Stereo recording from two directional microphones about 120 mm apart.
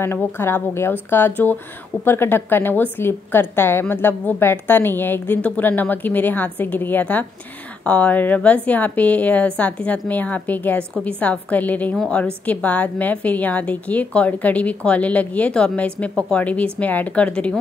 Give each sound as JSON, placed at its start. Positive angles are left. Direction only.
{"t": 0.0, "sound": "a woman's voice", "side_deg": 20}